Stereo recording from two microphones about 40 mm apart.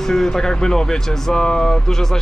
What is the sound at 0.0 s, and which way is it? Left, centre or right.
Speech, centre.